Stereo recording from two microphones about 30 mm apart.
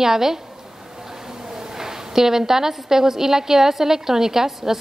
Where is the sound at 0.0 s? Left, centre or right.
Centre.